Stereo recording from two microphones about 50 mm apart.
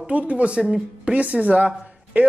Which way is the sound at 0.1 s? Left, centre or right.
Right.